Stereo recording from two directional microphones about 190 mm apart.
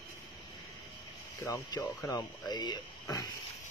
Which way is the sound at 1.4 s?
20° left (ahead or behind).